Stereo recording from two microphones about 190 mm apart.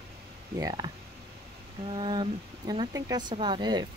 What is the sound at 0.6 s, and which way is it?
Speech, 20° right (ahead or behind).